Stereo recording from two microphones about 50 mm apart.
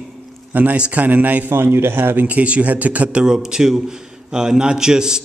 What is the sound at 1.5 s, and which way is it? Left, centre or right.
Speech, right.